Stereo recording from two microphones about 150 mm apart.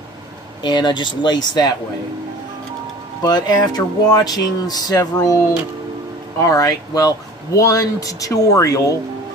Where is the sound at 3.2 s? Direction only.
25° left (ahead or behind).